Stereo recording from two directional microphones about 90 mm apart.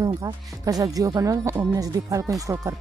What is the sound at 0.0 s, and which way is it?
Speech, 40° right (ahead or behind).